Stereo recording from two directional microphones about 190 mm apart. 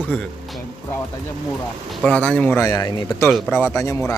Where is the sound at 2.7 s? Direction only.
20° left (ahead or behind).